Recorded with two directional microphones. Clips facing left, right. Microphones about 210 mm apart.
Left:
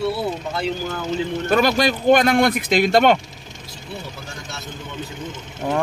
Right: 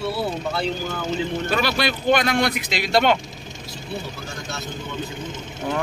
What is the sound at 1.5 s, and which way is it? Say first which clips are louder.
Speech: left 8 dB; 45° left (ahead or behind).